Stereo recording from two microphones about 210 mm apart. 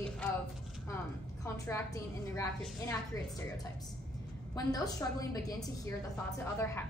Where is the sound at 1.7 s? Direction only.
15° left (ahead or behind).